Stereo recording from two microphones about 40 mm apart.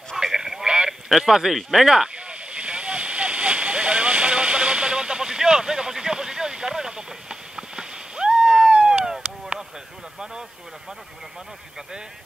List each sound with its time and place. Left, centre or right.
0.2 s a sound: centre
0.8 s speech: centre
2.1 s waterfall: right